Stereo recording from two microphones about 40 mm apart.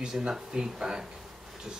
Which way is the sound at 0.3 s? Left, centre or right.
Centre.